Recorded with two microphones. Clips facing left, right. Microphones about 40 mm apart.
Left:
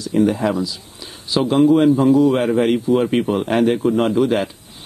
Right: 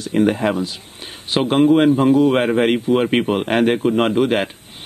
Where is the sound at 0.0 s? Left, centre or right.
Right.